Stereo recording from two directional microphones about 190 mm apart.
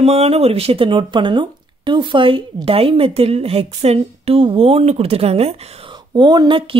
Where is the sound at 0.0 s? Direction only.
30° right (ahead or behind).